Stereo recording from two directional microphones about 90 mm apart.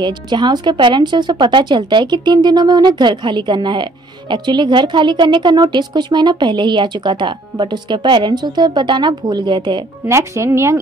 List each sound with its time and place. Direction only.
0.0 s speech: 55° right (ahead or behind)
10.0 s speech: 30° right (ahead or behind)